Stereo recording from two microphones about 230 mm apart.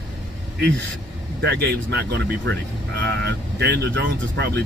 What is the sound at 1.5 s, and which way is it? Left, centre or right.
Speech, right.